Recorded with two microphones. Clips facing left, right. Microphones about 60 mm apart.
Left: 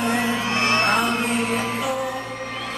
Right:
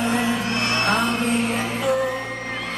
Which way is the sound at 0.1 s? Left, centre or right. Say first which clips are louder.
Even; left.